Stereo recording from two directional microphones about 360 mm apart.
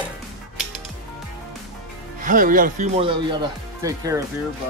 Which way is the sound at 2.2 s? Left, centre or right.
Right.